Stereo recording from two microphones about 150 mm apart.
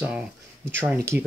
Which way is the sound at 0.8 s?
15° right (ahead or behind).